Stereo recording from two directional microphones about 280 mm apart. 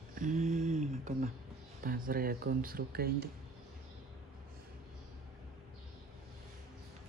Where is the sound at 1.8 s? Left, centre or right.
Right.